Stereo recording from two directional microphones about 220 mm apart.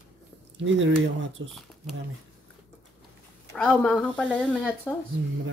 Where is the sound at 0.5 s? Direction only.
60° right (ahead or behind).